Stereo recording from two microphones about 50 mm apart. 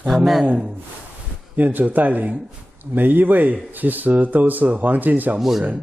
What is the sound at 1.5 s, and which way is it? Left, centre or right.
A man's voice, right.